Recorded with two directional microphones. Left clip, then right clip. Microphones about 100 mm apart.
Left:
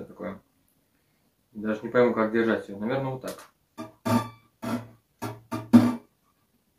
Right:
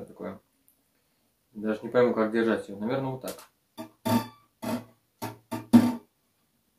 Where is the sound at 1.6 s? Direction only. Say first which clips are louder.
Left 1 dB; 20° right (ahead or behind).